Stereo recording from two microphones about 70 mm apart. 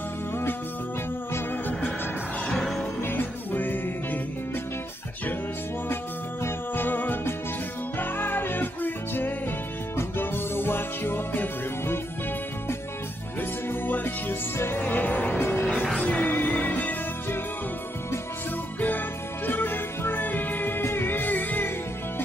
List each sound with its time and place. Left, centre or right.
2.4 s music: centre
3.0 s music: left
6.4 s music: left
13.4 s music: left
18.8 s music: left